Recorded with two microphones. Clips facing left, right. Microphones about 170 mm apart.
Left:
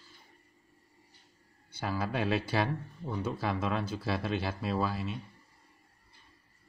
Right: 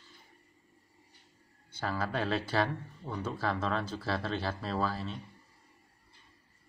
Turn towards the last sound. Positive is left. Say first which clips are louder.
# left 1 dB
turn(degrees=15)  # may be behind; listen again after turning